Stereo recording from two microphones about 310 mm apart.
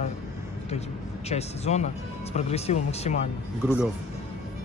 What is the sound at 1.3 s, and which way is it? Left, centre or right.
Speech, left.